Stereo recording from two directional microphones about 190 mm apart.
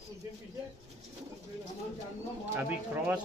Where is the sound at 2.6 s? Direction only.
10° right (ahead or behind).